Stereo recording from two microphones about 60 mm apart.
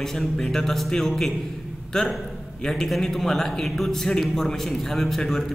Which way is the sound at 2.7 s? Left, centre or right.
Centre.